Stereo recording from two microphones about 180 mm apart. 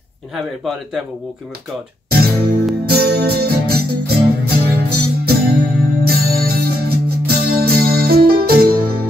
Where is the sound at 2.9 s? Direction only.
60° right (ahead or behind).